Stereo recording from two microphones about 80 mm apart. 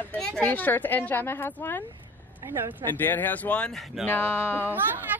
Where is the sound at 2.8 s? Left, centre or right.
Left.